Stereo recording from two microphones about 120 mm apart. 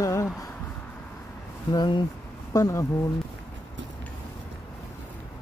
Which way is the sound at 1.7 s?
35° left (ahead or behind).